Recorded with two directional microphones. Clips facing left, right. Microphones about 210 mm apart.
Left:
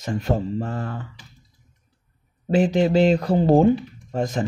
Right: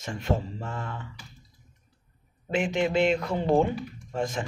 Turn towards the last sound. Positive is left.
turn(degrees=40)  # may be behind; listen again after turning